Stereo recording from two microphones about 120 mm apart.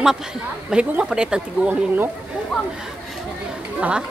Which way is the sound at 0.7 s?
5° right (ahead or behind).